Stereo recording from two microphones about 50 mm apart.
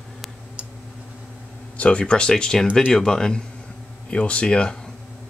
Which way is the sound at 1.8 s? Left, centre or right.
Left.